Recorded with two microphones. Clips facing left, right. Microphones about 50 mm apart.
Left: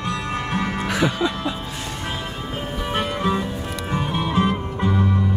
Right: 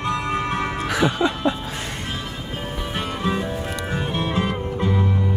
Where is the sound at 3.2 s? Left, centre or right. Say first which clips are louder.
Left 1 dB; centre.